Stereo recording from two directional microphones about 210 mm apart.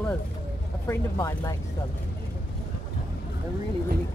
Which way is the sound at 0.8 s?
15° left (ahead or behind).